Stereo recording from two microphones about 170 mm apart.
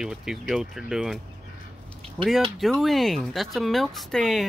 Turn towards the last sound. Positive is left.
turn(degrees=0)  # may be behind; listen again after turning